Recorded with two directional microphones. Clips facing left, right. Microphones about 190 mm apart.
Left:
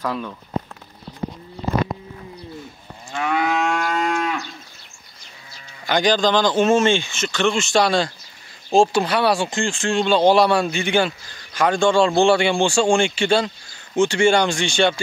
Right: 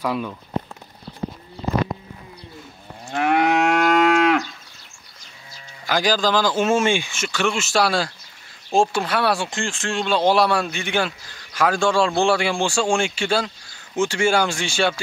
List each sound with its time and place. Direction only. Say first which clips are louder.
0.0 s speech: right 2 dB; 10° right (ahead or behind)
3.1 s moo: right 3 dB; 60° right (ahead or behind)
5.9 s speech: left 2 dB; 5° right (ahead or behind)